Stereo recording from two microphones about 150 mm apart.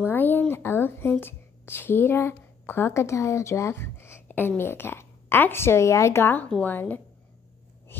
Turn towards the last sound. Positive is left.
turn(degrees=10)  # may be behind; listen again after turning